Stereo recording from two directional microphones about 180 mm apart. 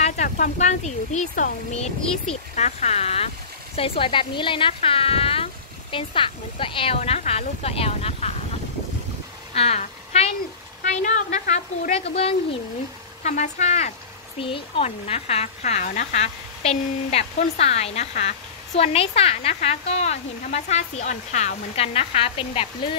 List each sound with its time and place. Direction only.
0.0 s speech: 40° left (ahead or behind)
9.5 s a woman's voice: 35° left (ahead or behind)